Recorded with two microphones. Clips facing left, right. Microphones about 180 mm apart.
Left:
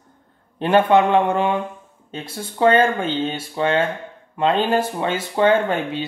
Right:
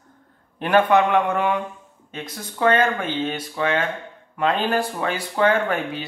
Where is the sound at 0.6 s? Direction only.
25° left (ahead or behind).